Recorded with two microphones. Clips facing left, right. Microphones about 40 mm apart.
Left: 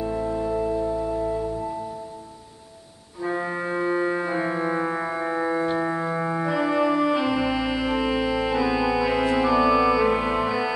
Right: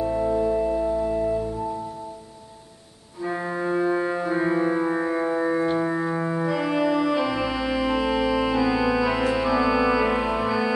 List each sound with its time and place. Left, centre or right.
0.0 s music: centre
3.2 s organ: centre
3.5 s music: centre